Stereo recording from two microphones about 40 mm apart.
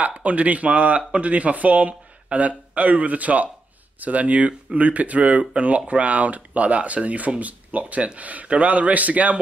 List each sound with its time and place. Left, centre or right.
0.0 s speech: right